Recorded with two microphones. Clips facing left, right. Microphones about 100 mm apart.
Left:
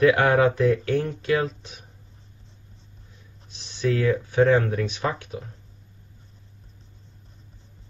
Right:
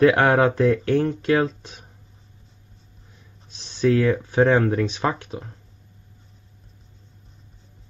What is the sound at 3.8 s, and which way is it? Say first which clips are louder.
Speech: right 4 dB; 35° right (ahead or behind).